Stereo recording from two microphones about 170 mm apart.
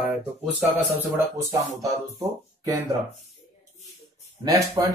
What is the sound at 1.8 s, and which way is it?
Speech, 20° right (ahead or behind).